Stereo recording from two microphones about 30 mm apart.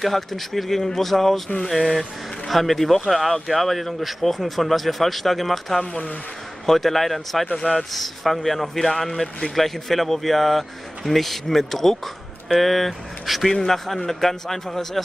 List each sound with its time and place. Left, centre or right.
0.0 s a man's voice: centre
2.0 s a man's voice: centre
13.5 s a man's voice: centre